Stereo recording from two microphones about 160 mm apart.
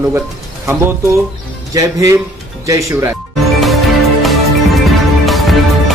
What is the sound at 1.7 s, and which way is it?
A man's voice, 20° right (ahead or behind).